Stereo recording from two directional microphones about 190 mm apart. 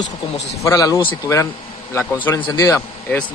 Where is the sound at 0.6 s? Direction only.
15° left (ahead or behind).